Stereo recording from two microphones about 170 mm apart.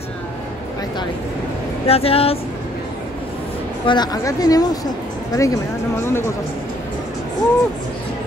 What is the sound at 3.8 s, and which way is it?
Speech, 25° left (ahead or behind).